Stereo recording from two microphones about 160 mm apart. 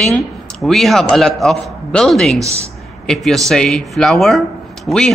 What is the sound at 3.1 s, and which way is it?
Speech, 5° left (ahead or behind).